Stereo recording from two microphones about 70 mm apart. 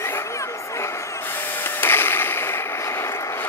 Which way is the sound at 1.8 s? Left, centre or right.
Left.